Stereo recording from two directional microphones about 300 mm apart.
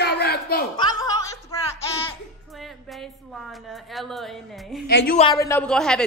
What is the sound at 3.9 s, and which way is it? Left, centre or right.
Speech, centre.